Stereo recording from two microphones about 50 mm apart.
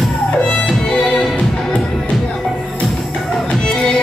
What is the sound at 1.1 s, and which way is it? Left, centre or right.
Music, left.